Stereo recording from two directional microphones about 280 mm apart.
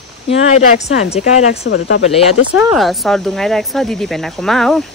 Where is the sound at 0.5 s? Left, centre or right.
Left.